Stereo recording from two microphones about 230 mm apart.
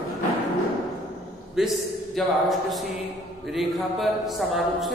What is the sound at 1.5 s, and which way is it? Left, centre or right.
A man's voice, centre.